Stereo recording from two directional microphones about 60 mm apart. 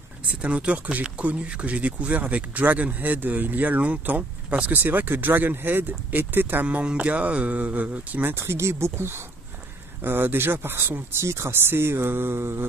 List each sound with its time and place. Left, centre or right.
0.3 s speech: right
8.4 s speech: right